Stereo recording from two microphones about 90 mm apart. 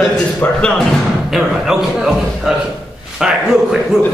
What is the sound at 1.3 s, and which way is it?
A man's voice, 5° right (ahead or behind).